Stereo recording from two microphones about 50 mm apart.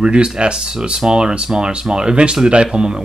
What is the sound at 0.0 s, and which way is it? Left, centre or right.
Speech, centre.